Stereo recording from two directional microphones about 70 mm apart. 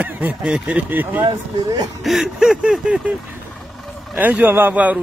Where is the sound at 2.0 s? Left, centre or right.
Centre.